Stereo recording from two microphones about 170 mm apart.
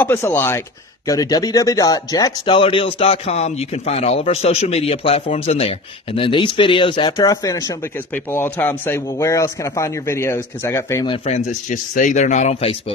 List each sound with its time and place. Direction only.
0.0 s speech: 10° left (ahead or behind)
11.1 s speech: 40° left (ahead or behind)